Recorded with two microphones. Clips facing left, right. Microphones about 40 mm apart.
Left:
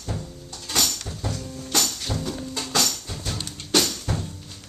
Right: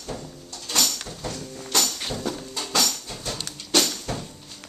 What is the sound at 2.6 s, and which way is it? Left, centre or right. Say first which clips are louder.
Music: right 1 dB; centre.